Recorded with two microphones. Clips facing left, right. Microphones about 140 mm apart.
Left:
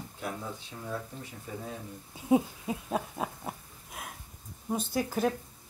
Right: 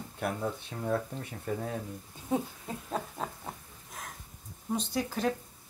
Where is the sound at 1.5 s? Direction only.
60° right (ahead or behind).